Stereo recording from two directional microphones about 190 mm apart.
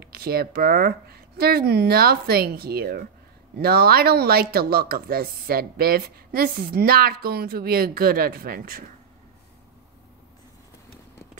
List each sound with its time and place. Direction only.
0.0 s speech: 55° right (ahead or behind)